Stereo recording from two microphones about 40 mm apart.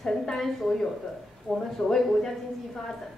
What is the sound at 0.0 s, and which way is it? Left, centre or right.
A woman's voice, centre.